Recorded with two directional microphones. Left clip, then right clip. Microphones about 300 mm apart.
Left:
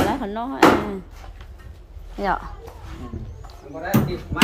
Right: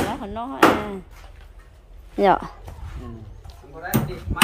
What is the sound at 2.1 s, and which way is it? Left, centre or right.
Speech, right.